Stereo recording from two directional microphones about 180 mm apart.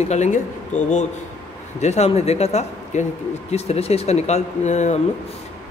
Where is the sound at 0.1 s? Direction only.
40° left (ahead or behind).